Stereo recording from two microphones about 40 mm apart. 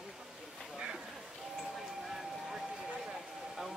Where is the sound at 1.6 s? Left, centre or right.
Centre.